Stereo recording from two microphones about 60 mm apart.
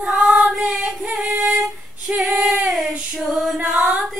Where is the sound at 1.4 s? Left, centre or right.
Centre.